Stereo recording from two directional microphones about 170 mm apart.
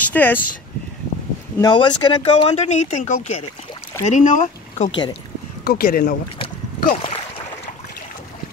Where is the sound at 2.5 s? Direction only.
40° left (ahead or behind).